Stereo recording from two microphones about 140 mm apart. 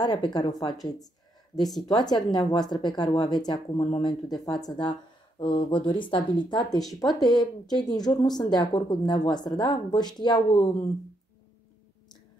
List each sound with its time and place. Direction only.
0.0 s speech: 30° left (ahead or behind)
0.8 s a sound: 25° left (ahead or behind)
1.9 s speech: 30° left (ahead or behind)